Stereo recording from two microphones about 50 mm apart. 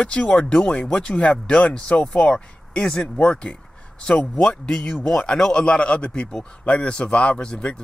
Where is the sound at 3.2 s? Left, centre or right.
Left.